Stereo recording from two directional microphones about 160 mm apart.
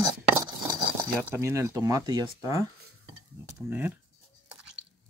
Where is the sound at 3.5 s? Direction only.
10° right (ahead or behind).